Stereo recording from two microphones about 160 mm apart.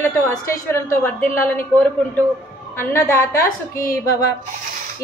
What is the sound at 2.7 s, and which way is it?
Speech, 15° left (ahead or behind).